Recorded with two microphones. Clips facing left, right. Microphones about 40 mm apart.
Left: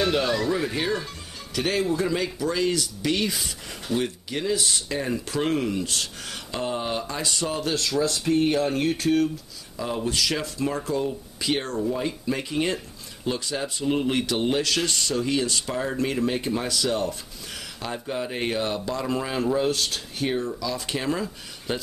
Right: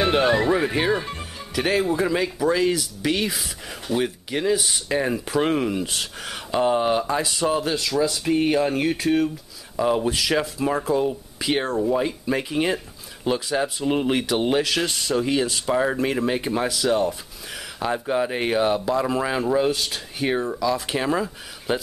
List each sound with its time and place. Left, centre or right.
0.0 s speech: right; by 15.7 s centre
15.7 s speech: right
20.3 s speech: right